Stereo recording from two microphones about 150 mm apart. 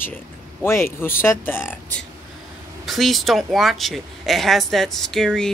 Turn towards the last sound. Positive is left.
turn(degrees=5)  # may be behind; listen again after turning